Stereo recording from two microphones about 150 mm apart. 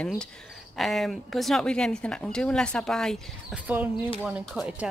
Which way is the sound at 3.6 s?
10° right (ahead or behind).